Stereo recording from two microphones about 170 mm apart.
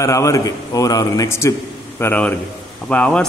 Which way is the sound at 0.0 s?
20° left (ahead or behind).